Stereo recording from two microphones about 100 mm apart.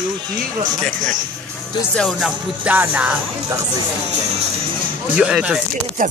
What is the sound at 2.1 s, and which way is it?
Music, 10° right (ahead or behind).